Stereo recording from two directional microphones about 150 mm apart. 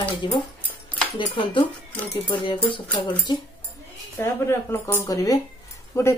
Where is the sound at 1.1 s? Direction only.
35° left (ahead or behind).